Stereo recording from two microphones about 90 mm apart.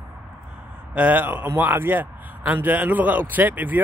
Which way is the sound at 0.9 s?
15° right (ahead or behind).